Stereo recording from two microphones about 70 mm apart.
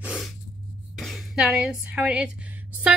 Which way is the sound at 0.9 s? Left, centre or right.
Centre.